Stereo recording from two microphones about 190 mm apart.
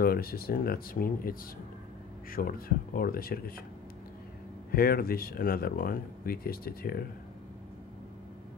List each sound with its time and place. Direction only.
0.0 s speech: 50° left (ahead or behind)
2.3 s speech: 50° left (ahead or behind)
4.7 s speech: 50° left (ahead or behind)